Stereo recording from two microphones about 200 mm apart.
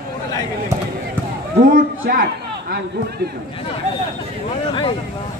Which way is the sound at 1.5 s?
45° right (ahead or behind).